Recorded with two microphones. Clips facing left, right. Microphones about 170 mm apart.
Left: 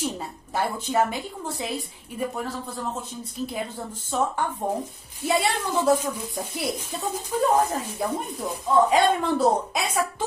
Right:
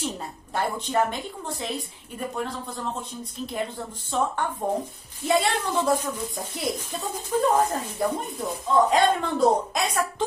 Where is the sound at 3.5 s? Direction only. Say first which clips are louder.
Right 1 dB; 5° left (ahead or behind).